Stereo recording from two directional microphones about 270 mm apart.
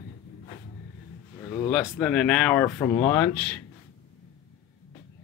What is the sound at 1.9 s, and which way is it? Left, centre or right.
Speech, centre.